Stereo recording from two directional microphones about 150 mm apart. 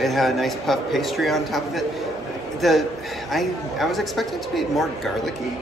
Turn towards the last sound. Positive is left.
turn(degrees=0)  # may be behind; listen again after turning